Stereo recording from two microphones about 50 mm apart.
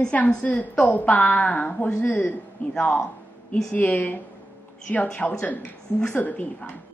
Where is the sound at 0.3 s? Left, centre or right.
Left.